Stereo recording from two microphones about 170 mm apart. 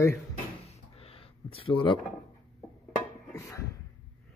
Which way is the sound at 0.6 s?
35° left (ahead or behind).